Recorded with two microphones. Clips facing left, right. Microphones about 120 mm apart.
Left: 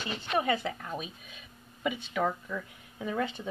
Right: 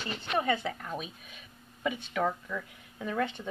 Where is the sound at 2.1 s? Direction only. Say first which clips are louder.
Even; 5° left (ahead or behind).